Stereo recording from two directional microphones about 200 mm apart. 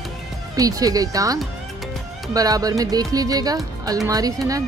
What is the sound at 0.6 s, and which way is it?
Speech, 15° right (ahead or behind).